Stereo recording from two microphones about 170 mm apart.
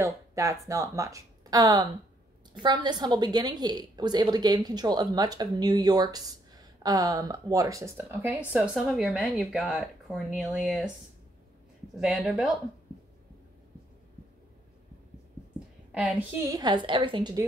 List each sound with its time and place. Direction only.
0.0 s a woman's voice: 20° right (ahead or behind)
12.0 s speech: centre (ahead or behind)
15.9 s a woman's voice: 5° right (ahead or behind)
16.5 s a woman's voice: 25° right (ahead or behind)